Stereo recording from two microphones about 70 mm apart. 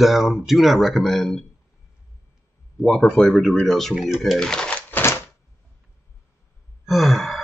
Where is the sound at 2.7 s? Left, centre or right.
Centre.